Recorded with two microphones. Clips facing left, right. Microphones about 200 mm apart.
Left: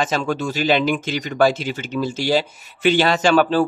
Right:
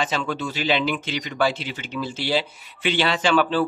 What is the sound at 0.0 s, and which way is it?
Speech, 45° left (ahead or behind).